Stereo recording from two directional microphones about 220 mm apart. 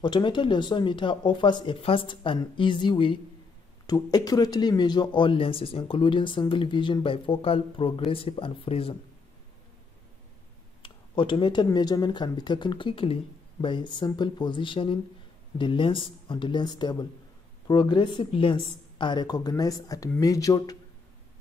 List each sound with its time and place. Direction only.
0.0 s a man's voice: 20° left (ahead or behind)
10.8 s a man's voice: 20° left (ahead or behind)